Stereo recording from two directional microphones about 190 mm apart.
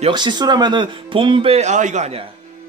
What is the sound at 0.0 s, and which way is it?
Speech, 25° right (ahead or behind).